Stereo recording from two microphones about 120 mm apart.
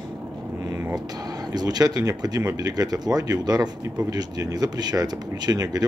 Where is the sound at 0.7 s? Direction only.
20° right (ahead or behind).